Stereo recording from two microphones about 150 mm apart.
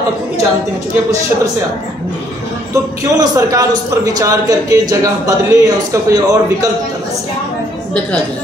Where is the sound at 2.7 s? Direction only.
20° right (ahead or behind).